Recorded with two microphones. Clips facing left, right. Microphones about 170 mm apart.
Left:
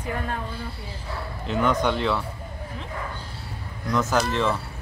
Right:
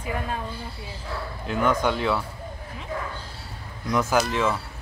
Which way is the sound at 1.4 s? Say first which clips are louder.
Even; 5° right (ahead or behind).